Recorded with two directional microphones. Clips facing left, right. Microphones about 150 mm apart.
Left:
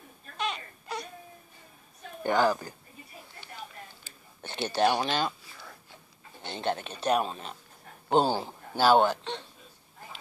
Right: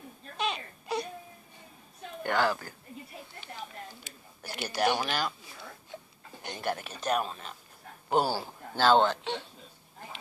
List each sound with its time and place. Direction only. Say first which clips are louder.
0.4 s whimper: right 1 dB; 25° right (ahead or behind)
2.2 s speech: left 3 dB; 15° left (ahead or behind)
4.4 s speech: left 4 dB; 25° left (ahead or behind)
6.4 s speech: left 2 dB; 25° left (ahead or behind)
8.2 s speech: left 3 dB; 20° left (ahead or behind)